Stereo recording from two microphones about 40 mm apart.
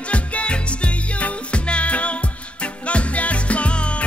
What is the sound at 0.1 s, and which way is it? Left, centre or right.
Music, left.